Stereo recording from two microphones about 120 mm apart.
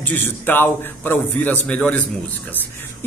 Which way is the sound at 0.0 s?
15° left (ahead or behind).